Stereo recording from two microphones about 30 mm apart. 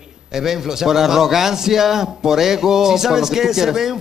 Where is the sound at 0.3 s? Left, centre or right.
Centre.